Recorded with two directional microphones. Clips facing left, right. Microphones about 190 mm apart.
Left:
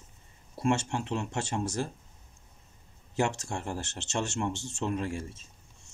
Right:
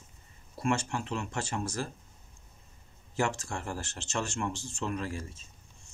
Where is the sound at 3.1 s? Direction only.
25° left (ahead or behind).